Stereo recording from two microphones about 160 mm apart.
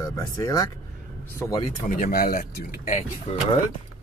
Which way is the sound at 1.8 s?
60° left (ahead or behind).